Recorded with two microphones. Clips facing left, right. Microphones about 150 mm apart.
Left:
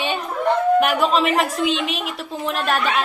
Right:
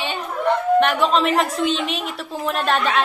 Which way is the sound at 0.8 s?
5° left (ahead or behind).